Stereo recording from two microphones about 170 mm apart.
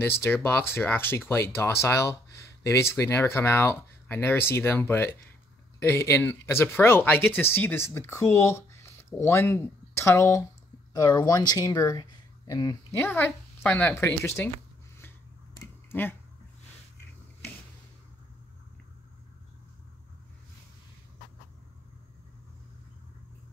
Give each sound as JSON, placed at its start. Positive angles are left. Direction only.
{"t": 0.0, "sound": "speech", "side_deg": 15}
{"t": 13.0, "sound": "speech", "side_deg": 10}
{"t": 15.6, "sound": "a sound", "side_deg": 10}